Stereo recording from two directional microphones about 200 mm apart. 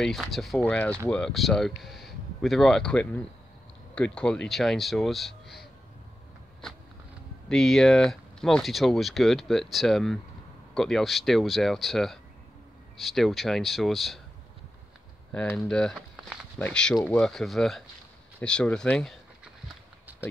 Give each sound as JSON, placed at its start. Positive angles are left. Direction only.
{"t": 0.0, "sound": "speech", "side_deg": 0}
{"t": 7.4, "sound": "speech", "side_deg": 0}
{"t": 15.3, "sound": "speech", "side_deg": 5}
{"t": 20.1, "sound": "clip-clop", "side_deg": -10}